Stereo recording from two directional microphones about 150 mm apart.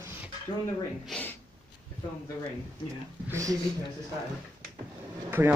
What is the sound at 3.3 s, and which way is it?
Speech, 20° right (ahead or behind).